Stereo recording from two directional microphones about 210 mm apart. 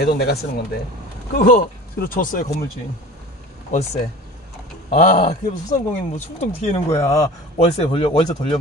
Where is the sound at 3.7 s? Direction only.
30° left (ahead or behind).